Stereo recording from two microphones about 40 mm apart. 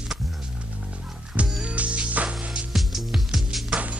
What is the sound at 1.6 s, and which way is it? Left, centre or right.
Music, right.